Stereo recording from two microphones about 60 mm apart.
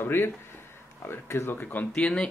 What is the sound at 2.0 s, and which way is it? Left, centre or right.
Speech, centre.